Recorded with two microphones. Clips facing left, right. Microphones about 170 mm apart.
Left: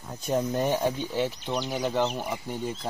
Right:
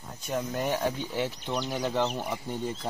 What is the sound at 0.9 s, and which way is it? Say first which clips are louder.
Speech: left 3 dB; 15° left (ahead or behind).